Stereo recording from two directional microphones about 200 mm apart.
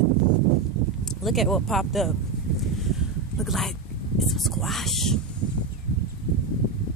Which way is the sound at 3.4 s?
Centre (ahead or behind).